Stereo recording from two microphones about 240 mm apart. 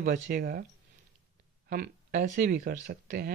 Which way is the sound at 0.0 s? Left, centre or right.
Right.